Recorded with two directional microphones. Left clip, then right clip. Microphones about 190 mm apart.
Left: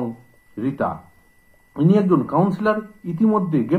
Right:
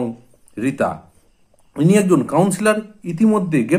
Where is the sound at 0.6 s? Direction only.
35° right (ahead or behind).